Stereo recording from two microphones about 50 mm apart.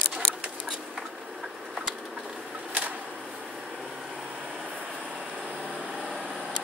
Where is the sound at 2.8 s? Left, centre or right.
Right.